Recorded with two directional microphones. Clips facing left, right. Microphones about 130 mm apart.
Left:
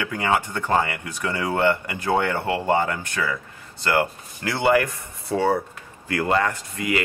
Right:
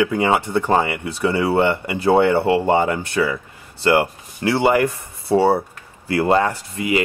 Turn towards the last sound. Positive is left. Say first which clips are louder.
# right 4 dB
turn(degrees=-20)  # may be behind; listen again after turning